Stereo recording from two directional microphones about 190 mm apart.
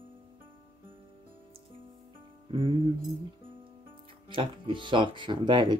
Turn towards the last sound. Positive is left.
turn(degrees=-25)  # may be behind; listen again after turning